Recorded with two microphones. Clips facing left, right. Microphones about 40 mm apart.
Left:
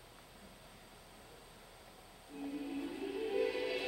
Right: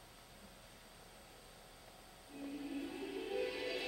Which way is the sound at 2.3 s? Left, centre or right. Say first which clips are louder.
Left 4 dB; left.